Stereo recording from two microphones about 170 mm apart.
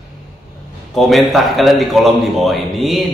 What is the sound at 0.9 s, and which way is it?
A man's voice, centre (ahead or behind).